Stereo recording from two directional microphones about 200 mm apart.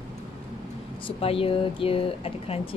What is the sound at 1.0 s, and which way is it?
A woman's voice, 30° left (ahead or behind).